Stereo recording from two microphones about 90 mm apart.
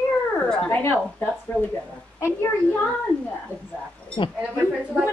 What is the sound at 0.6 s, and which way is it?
Speech, 25° left (ahead or behind).